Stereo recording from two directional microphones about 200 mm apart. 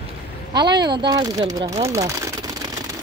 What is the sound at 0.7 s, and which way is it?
Speech, 20° right (ahead or behind).